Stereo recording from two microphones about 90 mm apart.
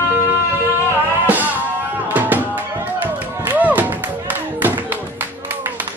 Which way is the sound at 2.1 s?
20° right (ahead or behind).